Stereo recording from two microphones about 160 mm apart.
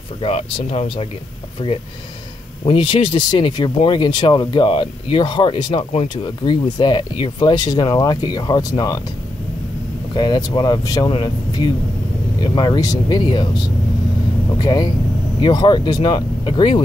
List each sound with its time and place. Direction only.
0.2 s speech: 35° left (ahead or behind)
10.1 s speech: 30° left (ahead or behind)
14.6 s speech: 25° left (ahead or behind)